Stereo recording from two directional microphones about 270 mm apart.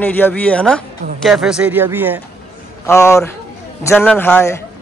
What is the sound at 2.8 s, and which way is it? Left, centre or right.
A man's voice, centre.